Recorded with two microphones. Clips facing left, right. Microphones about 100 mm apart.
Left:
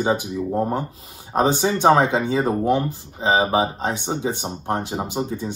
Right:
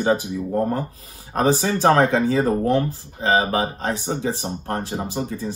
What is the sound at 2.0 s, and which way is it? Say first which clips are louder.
Speech: right 1 dB; 5° left (ahead or behind).